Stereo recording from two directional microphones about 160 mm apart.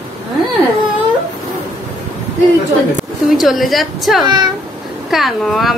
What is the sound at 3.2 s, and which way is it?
A woman's voice, centre (ahead or behind).